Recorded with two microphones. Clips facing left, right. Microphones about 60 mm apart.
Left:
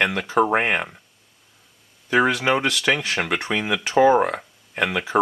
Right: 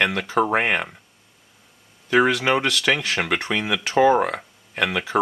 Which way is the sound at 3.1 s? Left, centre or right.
Centre.